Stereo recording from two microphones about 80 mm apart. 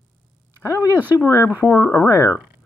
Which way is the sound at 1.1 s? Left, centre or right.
Left.